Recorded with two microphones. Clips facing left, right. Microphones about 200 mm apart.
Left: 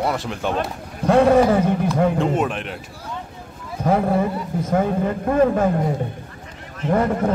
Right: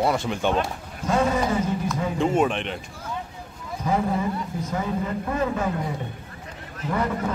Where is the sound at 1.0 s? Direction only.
60° left (ahead or behind).